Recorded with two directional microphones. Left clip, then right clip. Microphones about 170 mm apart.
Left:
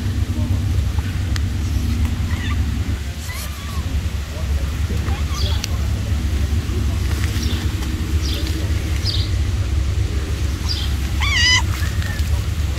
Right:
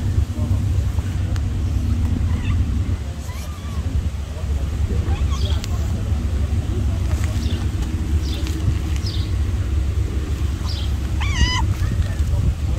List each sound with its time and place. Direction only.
11.1 s dog: 40° right (ahead or behind)